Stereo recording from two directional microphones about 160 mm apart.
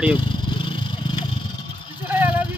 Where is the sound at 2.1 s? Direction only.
10° right (ahead or behind).